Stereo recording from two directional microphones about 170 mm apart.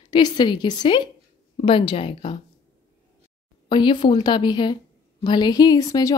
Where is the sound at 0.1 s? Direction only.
25° left (ahead or behind).